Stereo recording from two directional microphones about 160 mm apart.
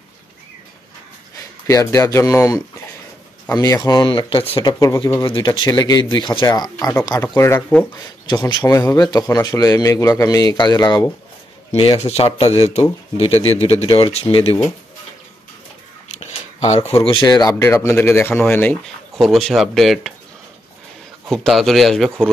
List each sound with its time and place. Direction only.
1.7 s a man's voice: 20° left (ahead or behind)
4.7 s a man's voice: 20° left (ahead or behind)
12.0 s speech: 40° left (ahead or behind)
16.2 s a sound: 45° left (ahead or behind)
17.0 s a man's voice: 30° left (ahead or behind)
17.6 s a man's voice: 15° left (ahead or behind)
21.3 s a man's voice: centre (ahead or behind)